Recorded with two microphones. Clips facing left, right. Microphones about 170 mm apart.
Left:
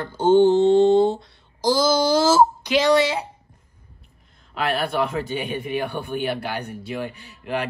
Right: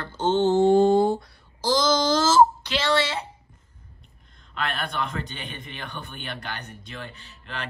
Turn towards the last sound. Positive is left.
turn(degrees=10)  # may be behind; listen again after turning